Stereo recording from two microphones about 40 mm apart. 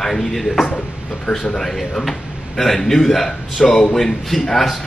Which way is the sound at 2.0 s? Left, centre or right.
Centre.